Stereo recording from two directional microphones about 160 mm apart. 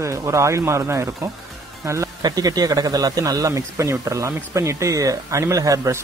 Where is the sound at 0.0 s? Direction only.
20° right (ahead or behind).